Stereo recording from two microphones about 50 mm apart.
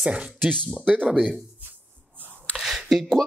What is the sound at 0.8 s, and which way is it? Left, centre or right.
Speech, centre.